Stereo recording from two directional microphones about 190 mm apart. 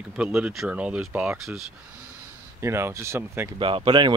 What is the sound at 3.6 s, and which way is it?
Speech, 25° right (ahead or behind).